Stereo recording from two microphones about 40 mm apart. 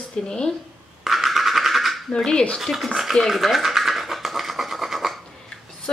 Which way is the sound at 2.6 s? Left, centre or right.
Centre.